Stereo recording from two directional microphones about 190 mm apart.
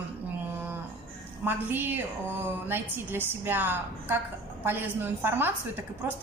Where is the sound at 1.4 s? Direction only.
10° right (ahead or behind).